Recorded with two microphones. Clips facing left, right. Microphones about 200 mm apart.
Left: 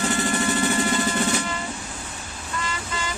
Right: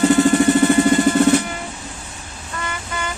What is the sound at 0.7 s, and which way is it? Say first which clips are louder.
Music: right 9 dB; 55° right (ahead or behind).